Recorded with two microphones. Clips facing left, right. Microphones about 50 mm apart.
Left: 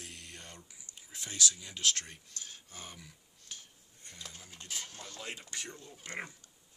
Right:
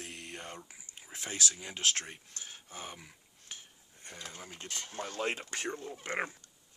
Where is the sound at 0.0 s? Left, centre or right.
Right.